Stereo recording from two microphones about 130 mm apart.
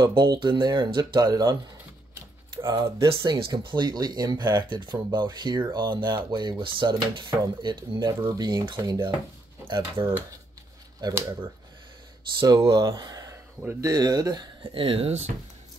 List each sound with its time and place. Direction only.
0.0 s speech: 30° right (ahead or behind)
3.1 s speech: 45° right (ahead or behind)
11.0 s speech: 30° right (ahead or behind)
12.4 s speech: 35° right (ahead or behind); by 15.3 s 55° right (ahead or behind)